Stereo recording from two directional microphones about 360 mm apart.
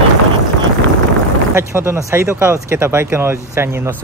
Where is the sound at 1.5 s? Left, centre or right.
Centre.